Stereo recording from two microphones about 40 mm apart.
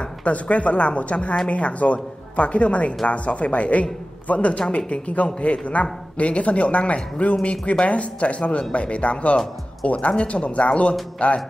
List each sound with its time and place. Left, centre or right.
0.0 s a man's voice: left